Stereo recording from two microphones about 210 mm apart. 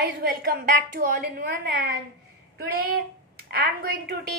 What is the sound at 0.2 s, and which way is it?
A woman's voice, 45° right (ahead or behind).